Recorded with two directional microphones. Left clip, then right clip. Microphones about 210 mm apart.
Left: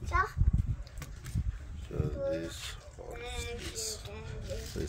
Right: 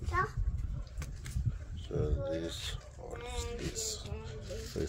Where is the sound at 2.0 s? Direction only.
20° right (ahead or behind).